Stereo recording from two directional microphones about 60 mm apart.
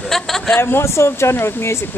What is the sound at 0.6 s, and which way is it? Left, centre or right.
Speech, left.